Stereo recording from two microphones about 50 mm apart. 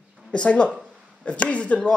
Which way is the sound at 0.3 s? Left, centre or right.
Left.